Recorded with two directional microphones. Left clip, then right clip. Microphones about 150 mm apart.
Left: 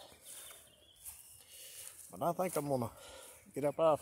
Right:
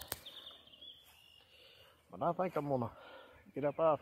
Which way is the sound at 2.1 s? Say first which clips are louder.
Even; 10° left (ahead or behind).